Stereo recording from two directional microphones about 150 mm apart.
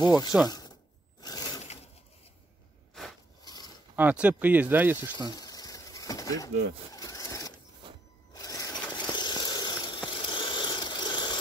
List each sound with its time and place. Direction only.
0.0 s snake: 25° left (ahead or behind)
0.5 s a sound: 25° left (ahead or behind)
3.4 s zipper: 25° left (ahead or behind)
3.9 s speech: 10° right (ahead or behind)
5.3 s a sound: 25° left (ahead or behind)
8.3 s vehicle: 25° left (ahead or behind)